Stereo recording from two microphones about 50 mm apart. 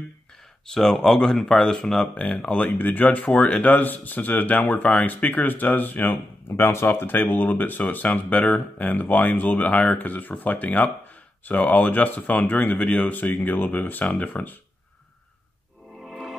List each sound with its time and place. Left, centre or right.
0.7 s speech: centre
2.1 s speech: left
6.5 s speech: left
16.0 s music: centre